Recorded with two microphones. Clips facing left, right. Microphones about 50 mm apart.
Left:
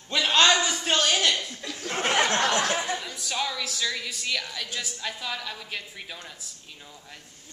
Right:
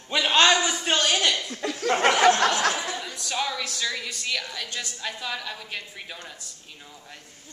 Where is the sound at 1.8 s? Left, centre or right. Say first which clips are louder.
Right 6 dB; right.